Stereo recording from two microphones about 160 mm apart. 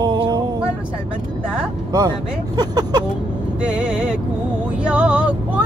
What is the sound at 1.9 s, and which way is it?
Child singing, 25° right (ahead or behind).